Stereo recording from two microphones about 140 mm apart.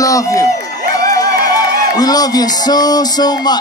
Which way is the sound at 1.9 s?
25° left (ahead or behind).